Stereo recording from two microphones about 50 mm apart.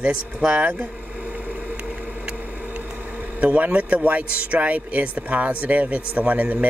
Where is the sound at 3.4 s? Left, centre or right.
Right.